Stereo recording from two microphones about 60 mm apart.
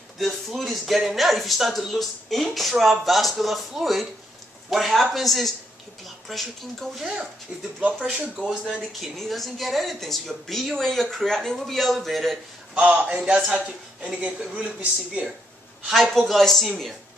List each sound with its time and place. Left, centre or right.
0.2 s speech: centre
7.8 s speech: right
9.0 s speech: centre
12.7 s a man's voice: centre
15.9 s speech: centre